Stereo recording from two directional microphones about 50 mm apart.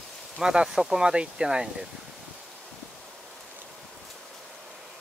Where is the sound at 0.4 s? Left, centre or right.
Centre.